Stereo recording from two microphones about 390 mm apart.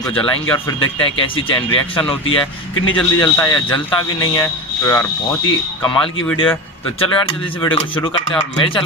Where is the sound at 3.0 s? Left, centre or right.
Centre.